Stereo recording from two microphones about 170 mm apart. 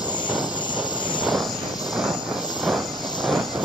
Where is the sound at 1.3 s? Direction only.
Centre (ahead or behind).